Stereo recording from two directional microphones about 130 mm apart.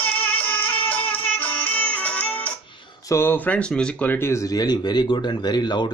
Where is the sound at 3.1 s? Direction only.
15° left (ahead or behind).